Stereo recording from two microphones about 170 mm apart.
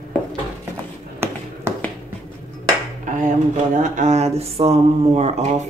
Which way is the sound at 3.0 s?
50° right (ahead or behind).